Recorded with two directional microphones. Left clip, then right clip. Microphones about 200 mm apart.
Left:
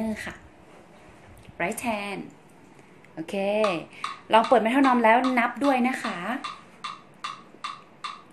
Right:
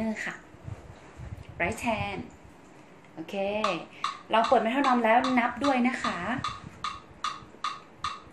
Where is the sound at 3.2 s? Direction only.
40° left (ahead or behind).